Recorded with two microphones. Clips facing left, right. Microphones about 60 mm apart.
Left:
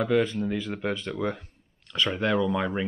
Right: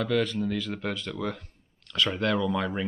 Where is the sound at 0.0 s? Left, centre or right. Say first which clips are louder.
Left 2 dB; centre.